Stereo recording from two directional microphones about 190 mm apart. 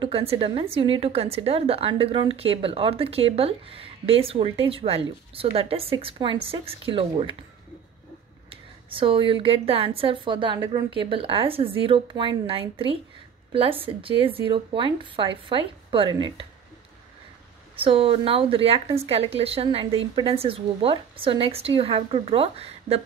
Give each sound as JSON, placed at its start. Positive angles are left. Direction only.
{"t": 0.0, "sound": "speech", "side_deg": -30}
{"t": 8.5, "sound": "speech", "side_deg": -30}
{"t": 17.7, "sound": "speech", "side_deg": -30}